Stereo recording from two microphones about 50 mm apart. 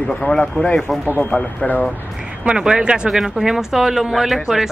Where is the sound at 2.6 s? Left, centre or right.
Centre.